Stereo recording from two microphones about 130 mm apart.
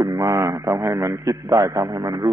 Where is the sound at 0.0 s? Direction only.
25° right (ahead or behind).